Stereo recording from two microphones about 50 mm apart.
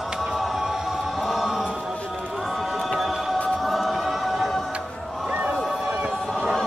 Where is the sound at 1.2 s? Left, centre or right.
Centre.